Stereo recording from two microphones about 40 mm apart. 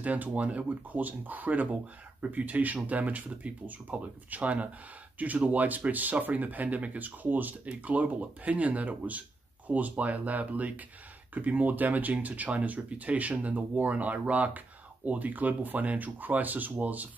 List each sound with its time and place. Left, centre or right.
0.0 s speech: right
7.6 s speech: right